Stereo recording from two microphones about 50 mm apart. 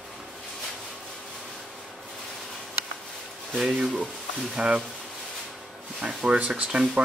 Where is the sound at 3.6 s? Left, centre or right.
Centre.